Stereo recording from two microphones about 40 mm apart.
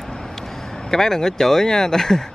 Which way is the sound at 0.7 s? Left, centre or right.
Centre.